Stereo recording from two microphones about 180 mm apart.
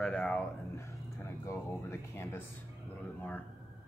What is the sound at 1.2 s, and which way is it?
Speech, 20° left (ahead or behind).